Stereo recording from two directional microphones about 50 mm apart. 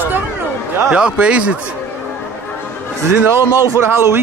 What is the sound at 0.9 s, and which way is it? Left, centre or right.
Speech, right.